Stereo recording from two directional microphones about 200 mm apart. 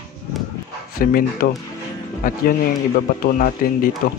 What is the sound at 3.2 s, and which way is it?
Speech, 45° left (ahead or behind).